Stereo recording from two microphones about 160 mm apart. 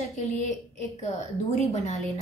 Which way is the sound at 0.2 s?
45° left (ahead or behind).